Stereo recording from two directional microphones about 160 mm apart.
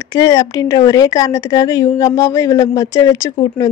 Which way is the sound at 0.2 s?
20° left (ahead or behind).